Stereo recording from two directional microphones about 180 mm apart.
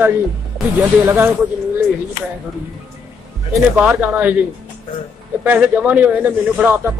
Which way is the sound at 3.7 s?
10° right (ahead or behind).